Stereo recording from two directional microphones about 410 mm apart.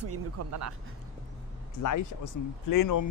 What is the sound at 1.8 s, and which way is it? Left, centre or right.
Speech, left.